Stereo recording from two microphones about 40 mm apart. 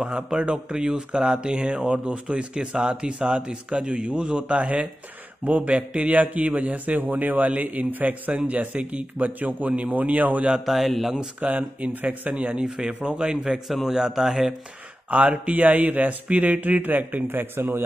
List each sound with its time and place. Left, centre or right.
0.4 s a man's voice: right
8.5 s a man's voice: right
10.6 s a man's voice: centre
11.4 s a man's voice: right
12.5 s speech: centre
12.8 s speech: right
13.3 s speech: centre
15.0 s speech: right